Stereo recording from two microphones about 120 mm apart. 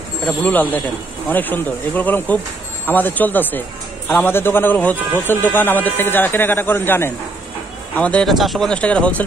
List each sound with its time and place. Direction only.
0.3 s speech: 10° left (ahead or behind)